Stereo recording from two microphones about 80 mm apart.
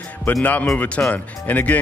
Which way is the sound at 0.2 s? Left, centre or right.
Left.